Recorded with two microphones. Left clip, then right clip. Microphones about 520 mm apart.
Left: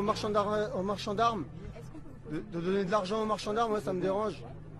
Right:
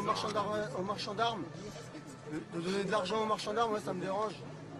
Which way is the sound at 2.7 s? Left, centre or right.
Left.